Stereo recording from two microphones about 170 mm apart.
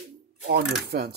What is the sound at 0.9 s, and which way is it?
Speech, 65° right (ahead or behind).